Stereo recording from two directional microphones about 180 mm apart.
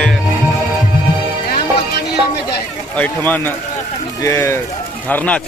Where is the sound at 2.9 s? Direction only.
10° left (ahead or behind).